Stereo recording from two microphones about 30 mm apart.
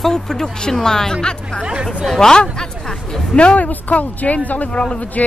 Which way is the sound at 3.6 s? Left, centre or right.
Left.